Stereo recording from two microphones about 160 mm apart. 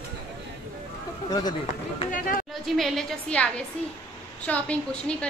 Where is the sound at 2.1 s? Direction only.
60° left (ahead or behind).